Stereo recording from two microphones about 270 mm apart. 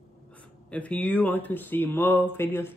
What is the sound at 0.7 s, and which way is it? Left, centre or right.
Speech, centre.